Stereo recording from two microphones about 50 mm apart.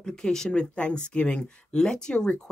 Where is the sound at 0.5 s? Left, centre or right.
Left.